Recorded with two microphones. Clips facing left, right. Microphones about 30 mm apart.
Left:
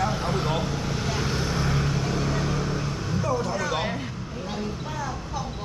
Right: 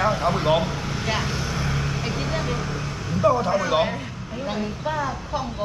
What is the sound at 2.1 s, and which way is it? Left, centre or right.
Vehicle, right.